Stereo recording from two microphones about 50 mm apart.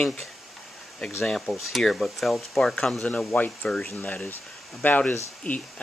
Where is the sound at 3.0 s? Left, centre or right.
Left.